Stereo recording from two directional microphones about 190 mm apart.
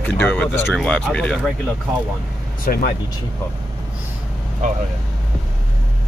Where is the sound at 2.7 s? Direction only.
50° left (ahead or behind).